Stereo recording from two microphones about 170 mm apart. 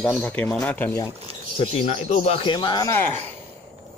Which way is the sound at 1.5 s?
40° left (ahead or behind).